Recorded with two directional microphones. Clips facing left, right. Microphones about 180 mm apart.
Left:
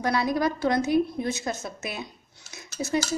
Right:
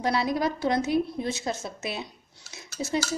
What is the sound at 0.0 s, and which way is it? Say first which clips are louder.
A woman's voice: left 1 dB; 25° right (ahead or behind).